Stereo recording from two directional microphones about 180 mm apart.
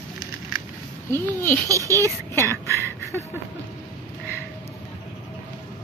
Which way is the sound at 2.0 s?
15° left (ahead or behind).